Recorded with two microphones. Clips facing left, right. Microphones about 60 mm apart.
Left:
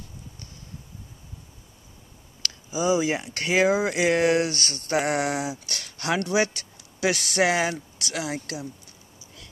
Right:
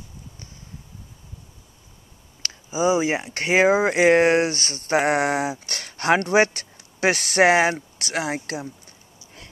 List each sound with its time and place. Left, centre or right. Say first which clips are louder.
2.4 s speech: right 4 dB; right